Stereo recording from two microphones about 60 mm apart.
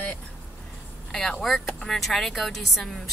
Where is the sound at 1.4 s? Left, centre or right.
Centre.